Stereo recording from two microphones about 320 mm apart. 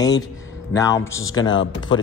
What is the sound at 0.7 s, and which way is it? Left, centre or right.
Speech, centre.